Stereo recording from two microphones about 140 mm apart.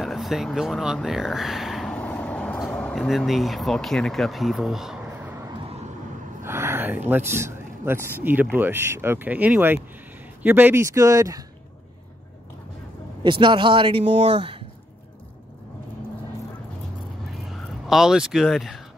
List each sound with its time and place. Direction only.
0.0 s a sound: centre (ahead or behind)
2.7 s speech: 5° left (ahead or behind); by 5.5 s 15° right (ahead or behind)
5.6 s vehicle: 45° right (ahead or behind)
6.4 s speech: 20° right (ahead or behind)
13.2 s a man's voice: 35° right (ahead or behind)
17.5 s speech: centre (ahead or behind)